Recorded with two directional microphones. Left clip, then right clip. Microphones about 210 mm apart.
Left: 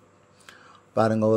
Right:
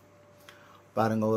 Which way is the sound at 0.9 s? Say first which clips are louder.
Left 6 dB; 20° left (ahead or behind).